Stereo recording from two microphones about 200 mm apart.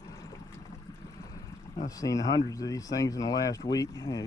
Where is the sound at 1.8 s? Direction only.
15° left (ahead or behind).